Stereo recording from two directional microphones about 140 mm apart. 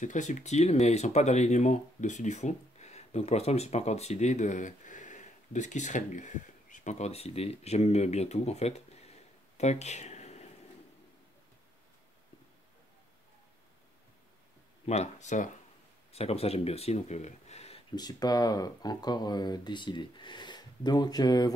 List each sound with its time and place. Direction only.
0.0 s speech: 60° left (ahead or behind)
9.6 s a sound: 55° left (ahead or behind)
14.9 s speech: 55° left (ahead or behind)
16.1 s speech: 45° left (ahead or behind)
17.9 s speech: 30° left (ahead or behind)